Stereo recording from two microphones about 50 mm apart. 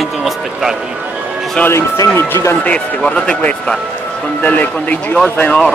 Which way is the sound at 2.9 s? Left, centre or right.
Left.